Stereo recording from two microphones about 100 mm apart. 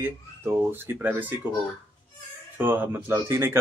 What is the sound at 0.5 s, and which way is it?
Speech, 20° right (ahead or behind).